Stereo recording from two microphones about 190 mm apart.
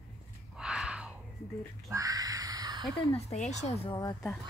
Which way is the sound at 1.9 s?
20° right (ahead or behind).